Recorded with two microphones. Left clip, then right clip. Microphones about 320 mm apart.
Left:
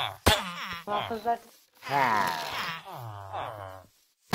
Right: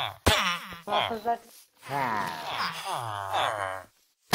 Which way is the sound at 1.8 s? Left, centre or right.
Centre.